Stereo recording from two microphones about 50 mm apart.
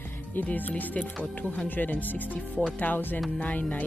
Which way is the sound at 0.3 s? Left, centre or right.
Left.